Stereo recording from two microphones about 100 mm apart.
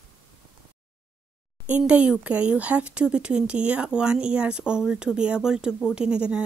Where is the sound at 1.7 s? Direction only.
15° right (ahead or behind).